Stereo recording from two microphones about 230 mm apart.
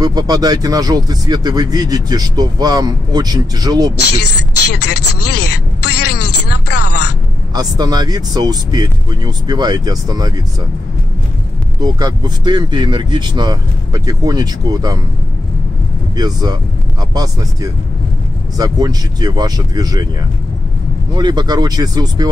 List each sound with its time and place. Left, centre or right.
0.0 s speech: centre
4.6 s a sound: left
4.9 s speech: left
5.9 s a sound: left
6.1 s music: left
7.5 s speech: centre
11.8 s speech: centre
16.2 s speech: centre
21.1 s speech: centre